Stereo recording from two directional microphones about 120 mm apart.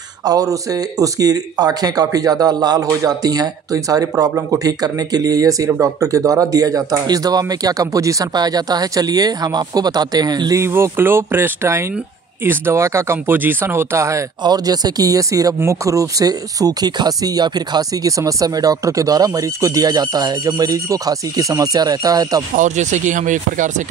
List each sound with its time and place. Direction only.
0.2 s speech: 30° right (ahead or behind)
10.6 s speech: 20° right (ahead or behind)
22.6 s speech: 85° right